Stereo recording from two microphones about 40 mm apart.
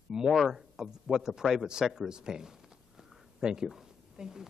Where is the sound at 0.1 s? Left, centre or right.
Centre.